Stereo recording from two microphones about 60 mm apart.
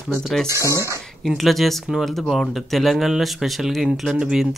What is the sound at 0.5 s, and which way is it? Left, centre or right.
Speech, left.